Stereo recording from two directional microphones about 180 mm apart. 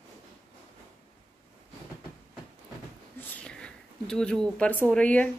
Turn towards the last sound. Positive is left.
turn(degrees=5)  # may be behind; listen again after turning